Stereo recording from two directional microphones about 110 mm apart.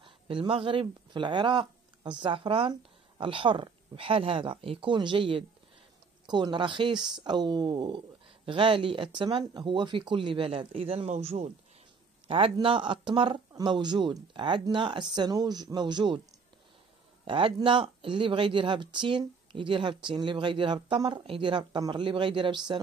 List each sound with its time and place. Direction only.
0.0 s speech: 50° right (ahead or behind); by 11.5 s 85° right
12.3 s a man's voice: 60° right (ahead or behind)
12.6 s speech: 50° right (ahead or behind)
17.2 s speech: 50° right (ahead or behind)